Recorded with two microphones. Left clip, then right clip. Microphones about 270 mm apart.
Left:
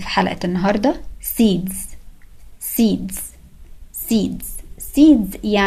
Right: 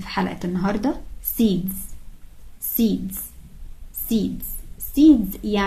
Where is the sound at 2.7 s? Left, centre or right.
Left.